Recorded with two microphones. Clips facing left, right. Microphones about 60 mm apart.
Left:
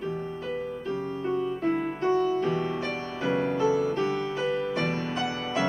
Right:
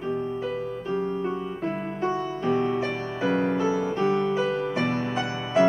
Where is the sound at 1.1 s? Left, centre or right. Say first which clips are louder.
Left 1 dB; centre.